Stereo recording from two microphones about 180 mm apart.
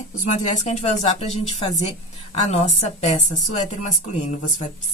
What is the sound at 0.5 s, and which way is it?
A woman's voice, 40° left (ahead or behind).